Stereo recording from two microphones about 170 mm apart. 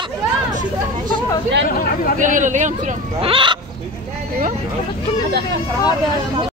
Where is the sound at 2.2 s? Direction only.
50° right (ahead or behind).